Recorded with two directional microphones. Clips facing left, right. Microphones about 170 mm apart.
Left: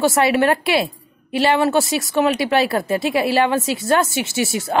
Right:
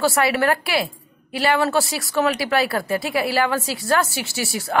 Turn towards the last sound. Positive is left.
turn(degrees=20)  # may be behind; listen again after turning